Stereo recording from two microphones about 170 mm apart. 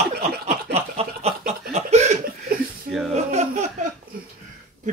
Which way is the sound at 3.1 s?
40° right (ahead or behind).